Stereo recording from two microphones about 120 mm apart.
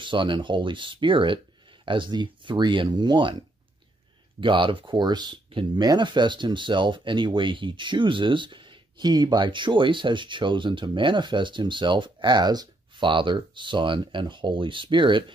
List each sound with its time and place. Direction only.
0.0 s speech: 45° right (ahead or behind)
4.4 s speech: 45° right (ahead or behind)